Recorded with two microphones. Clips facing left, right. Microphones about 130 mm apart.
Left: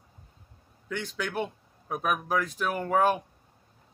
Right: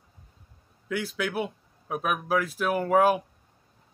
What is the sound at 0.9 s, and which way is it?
Speech, 5° right (ahead or behind).